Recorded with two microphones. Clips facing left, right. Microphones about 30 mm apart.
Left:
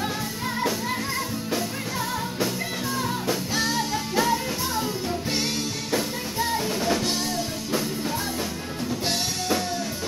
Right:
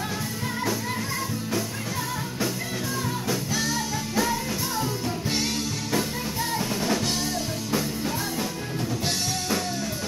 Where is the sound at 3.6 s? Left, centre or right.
Left.